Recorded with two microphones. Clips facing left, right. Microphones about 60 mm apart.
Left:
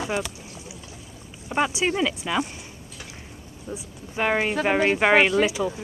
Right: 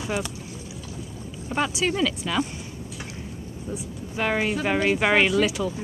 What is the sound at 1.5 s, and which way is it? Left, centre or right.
Speech, centre.